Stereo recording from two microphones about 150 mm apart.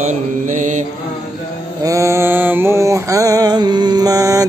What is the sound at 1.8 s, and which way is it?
Mantra, 20° right (ahead or behind).